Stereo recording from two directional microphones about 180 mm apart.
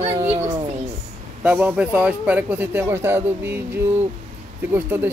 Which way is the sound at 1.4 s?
10° right (ahead or behind).